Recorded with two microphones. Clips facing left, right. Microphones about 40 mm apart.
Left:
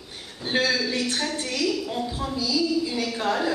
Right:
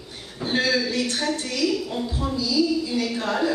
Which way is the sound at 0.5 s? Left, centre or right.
Centre.